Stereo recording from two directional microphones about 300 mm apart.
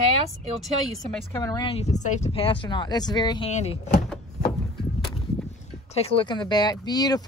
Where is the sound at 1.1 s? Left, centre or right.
Centre.